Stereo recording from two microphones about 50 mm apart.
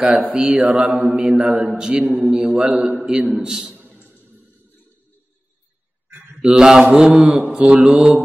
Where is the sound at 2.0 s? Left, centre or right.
Right.